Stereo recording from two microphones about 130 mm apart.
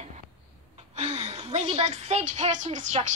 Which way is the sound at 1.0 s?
65° right (ahead or behind).